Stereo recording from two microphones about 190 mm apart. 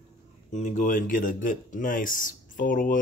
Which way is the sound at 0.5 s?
40° left (ahead or behind).